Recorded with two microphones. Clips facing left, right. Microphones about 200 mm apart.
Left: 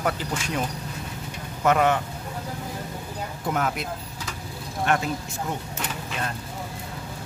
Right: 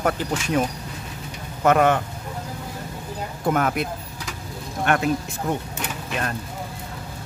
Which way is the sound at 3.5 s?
55° right (ahead or behind).